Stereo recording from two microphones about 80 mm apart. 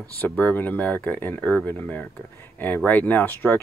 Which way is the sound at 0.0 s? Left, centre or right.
Left.